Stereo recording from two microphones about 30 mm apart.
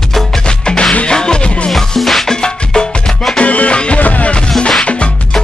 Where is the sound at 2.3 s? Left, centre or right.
Left.